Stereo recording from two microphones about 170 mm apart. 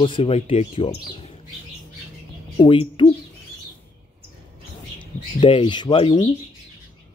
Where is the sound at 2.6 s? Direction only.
30° left (ahead or behind).